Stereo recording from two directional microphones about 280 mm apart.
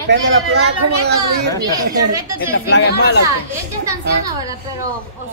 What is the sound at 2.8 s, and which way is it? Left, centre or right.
Speech, left.